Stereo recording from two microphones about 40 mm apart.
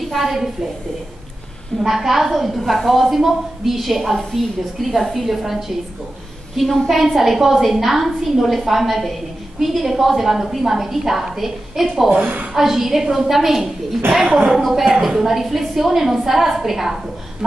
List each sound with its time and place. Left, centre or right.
0.1 s a woman's voice: centre
1.8 s a woman's voice: centre
4.0 s a woman's voice: centre
4.9 s a woman's voice: centre
12.1 s a woman's voice: right
12.5 s a woman's voice: centre
14.2 s speech: centre
14.6 s a woman's voice: centre